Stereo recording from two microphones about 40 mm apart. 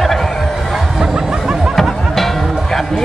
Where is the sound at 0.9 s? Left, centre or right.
Centre.